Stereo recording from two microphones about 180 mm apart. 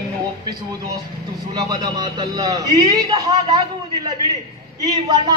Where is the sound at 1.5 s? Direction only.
20° right (ahead or behind).